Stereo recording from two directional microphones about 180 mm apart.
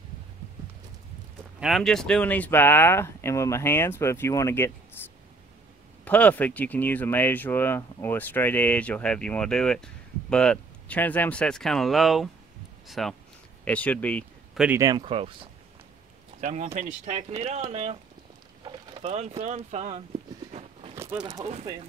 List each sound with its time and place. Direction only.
1.6 s speech: centre (ahead or behind); by 4.7 s 15° left (ahead or behind)
5.0 s whispering: 10° left (ahead or behind)
6.0 s speech: 10° left (ahead or behind)
14.8 s speech: 25° right (ahead or behind)
16.3 s speech: 40° right (ahead or behind)
19.0 s speech: 35° right (ahead or behind)
20.5 s a sound: 35° right (ahead or behind)
20.9 s speech: 15° right (ahead or behind)